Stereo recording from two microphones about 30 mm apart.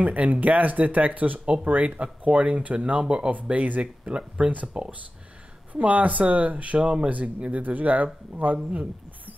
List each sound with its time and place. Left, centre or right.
0.0 s speech: right
1.4 s speech: right
4.4 s speech: right
4.7 s speech: right
5.7 s speech: right
7.6 s speech: right